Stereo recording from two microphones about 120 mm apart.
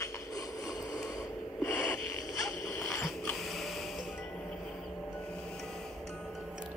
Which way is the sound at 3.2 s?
Centre (ahead or behind).